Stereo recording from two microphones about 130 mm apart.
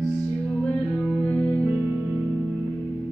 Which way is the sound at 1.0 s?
15° left (ahead or behind).